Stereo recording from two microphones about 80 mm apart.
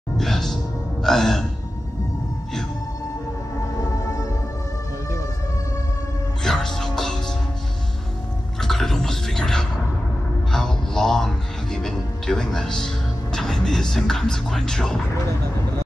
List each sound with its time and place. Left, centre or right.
0.2 s music: centre
3.9 s music: left
6.4 s music: centre
8.5 s a sound: centre
10.5 s music: centre